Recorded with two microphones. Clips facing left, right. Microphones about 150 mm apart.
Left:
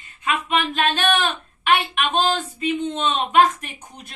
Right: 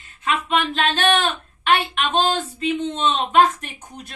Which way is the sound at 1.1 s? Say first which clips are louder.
Right 1 dB; 10° left (ahead or behind).